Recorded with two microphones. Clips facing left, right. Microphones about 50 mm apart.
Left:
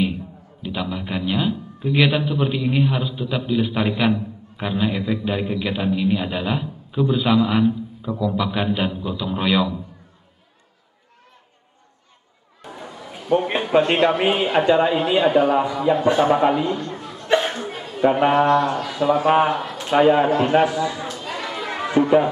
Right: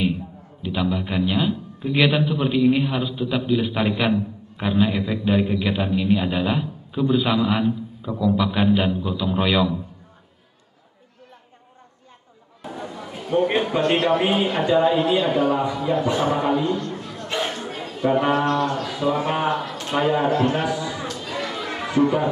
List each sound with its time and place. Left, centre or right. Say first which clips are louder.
0.6 s a man's voice: right 3 dB; centre
13.4 s a man's voice: right 3 dB; centre
13.7 s a man's voice: left 3 dB; left
16.1 s speech: left 6 dB; left
16.6 s a man's voice: even; centre
17.5 s a sound: left 2 dB; left
18.0 s speech: left 2 dB; left
18.4 s a sound: left 4 dB; centre
19.2 s a man's voice: left 5 dB; left
19.6 s a sound: left 1 dB; centre
19.9 s a man's voice: left 5 dB; left
20.9 s a sound: even; centre